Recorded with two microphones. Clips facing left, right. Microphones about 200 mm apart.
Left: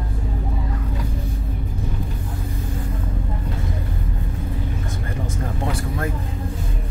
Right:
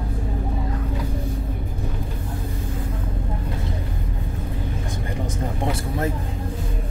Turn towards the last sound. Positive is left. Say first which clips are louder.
# right 1 dB
turn(degrees=-20)  # may be behind; listen again after turning